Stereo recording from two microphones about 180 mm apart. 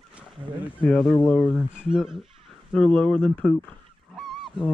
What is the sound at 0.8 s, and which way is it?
Speech, 5° left (ahead or behind).